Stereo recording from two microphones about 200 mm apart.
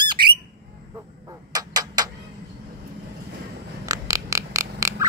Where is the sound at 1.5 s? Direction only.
20° right (ahead or behind).